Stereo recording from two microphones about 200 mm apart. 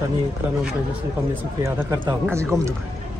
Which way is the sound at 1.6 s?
15° right (ahead or behind).